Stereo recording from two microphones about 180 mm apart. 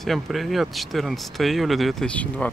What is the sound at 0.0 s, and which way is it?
Speech, centre (ahead or behind).